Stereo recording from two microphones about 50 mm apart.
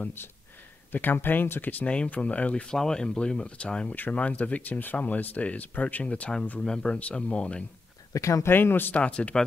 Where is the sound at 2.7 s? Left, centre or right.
Centre.